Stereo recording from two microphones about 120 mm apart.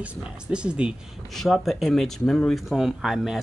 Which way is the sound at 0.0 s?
10° right (ahead or behind).